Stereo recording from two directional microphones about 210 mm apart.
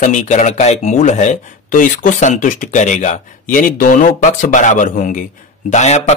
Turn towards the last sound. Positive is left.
turn(degrees=35)  # may be behind; listen again after turning